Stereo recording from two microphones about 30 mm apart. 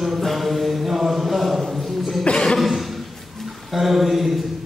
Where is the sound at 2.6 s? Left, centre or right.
Centre.